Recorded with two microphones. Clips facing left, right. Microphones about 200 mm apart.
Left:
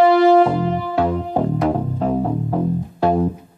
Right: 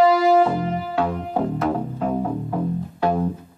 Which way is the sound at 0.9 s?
35° left (ahead or behind).